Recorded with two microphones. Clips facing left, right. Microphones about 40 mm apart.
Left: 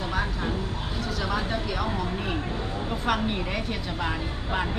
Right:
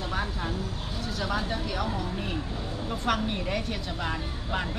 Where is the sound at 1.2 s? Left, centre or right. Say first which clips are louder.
Left 1 dB; centre.